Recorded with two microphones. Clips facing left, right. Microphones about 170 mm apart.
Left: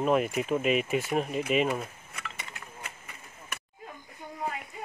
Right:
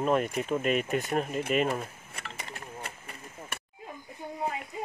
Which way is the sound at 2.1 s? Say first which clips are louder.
Right 1 dB; 35° right (ahead or behind).